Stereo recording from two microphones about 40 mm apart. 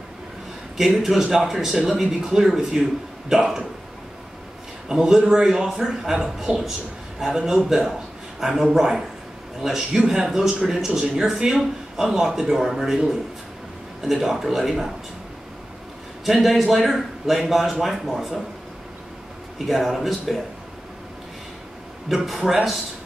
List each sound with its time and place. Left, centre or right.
0.7 s speech: centre
4.9 s speech: centre
14.3 s a man's voice: centre
16.3 s a man's voice: centre
19.6 s a man's voice: centre
22.1 s a man's voice: centre